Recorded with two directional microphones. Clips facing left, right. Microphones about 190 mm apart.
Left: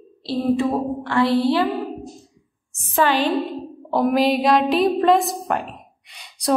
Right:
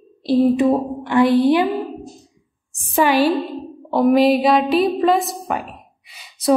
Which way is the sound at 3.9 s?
Centre (ahead or behind).